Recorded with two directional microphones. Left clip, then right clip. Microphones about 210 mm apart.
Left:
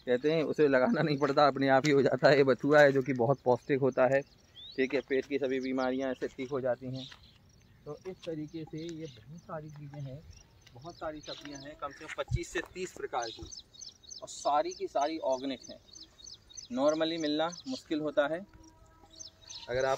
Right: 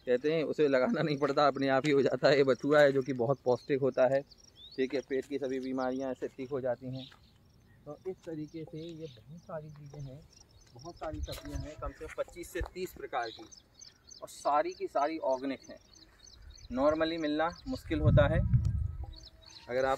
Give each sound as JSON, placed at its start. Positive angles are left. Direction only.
{"t": 0.0, "sound": "speech", "side_deg": 40}
{"t": 4.7, "sound": "speech", "side_deg": 20}
{"t": 9.5, "sound": "speech", "side_deg": 40}
{"t": 11.2, "sound": "speech", "side_deg": -10}
{"t": 11.8, "sound": "speech", "side_deg": -25}
{"t": 12.2, "sound": "speech", "side_deg": -45}
{"t": 12.7, "sound": "speech", "side_deg": -60}
{"t": 14.2, "sound": "speech", "side_deg": -10}
{"t": 16.7, "sound": "speech", "side_deg": 0}
{"t": 17.7, "sound": "speech", "side_deg": -15}
{"t": 19.6, "sound": "speech", "side_deg": -50}